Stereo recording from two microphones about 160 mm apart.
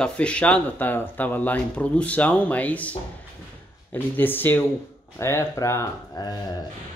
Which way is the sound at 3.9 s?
10° left (ahead or behind).